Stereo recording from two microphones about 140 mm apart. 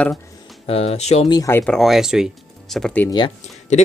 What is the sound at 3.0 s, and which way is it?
Speech, 35° left (ahead or behind).